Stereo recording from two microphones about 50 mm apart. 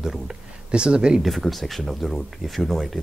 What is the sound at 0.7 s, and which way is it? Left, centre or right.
Speech, centre.